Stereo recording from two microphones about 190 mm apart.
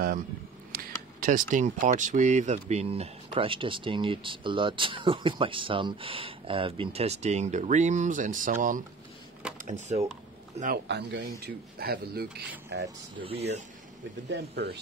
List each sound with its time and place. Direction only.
0.7 s a man's voice: 50° right (ahead or behind)
10.9 s speech: 65° right (ahead or behind)
13.2 s speech: 30° right (ahead or behind)
14.3 s speech: 60° right (ahead or behind)